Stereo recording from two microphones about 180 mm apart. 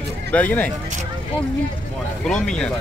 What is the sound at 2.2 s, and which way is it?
Speech, 5° left (ahead or behind).